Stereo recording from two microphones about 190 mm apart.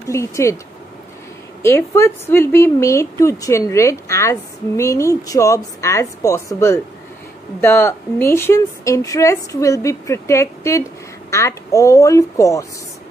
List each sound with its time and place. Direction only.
0.1 s a woman's voice: 15° left (ahead or behind)
1.6 s a woman's voice: 15° left (ahead or behind)